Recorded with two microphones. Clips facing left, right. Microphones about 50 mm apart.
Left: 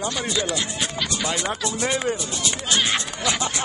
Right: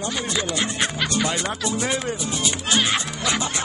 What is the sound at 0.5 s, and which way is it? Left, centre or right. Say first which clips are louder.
Speech: right 3 dB; right.